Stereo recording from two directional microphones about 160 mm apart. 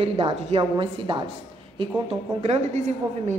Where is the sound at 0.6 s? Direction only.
30° right (ahead or behind).